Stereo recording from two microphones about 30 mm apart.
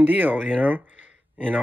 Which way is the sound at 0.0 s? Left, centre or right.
Right.